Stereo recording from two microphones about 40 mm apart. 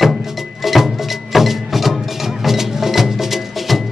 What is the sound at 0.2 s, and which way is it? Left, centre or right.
Music, centre.